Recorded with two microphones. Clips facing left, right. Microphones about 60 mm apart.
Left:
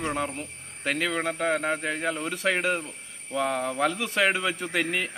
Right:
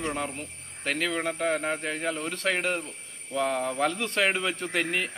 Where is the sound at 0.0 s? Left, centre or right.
Centre.